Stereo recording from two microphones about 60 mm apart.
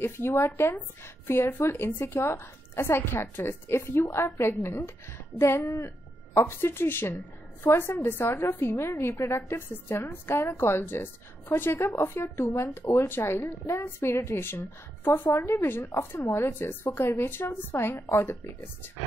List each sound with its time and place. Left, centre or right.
0.0 s a woman's voice: left
10.6 s a woman's voice: left
12.5 s speech: left
15.2 s a woman's voice: left
18.3 s a woman's voice: left